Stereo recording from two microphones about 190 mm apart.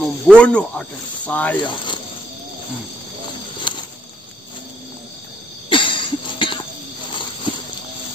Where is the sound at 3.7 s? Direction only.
25° left (ahead or behind).